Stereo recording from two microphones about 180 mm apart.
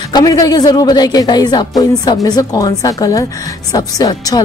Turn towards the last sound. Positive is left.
turn(degrees=20)  # may be behind; listen again after turning